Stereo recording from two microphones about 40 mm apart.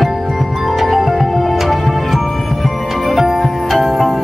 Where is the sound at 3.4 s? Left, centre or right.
Centre.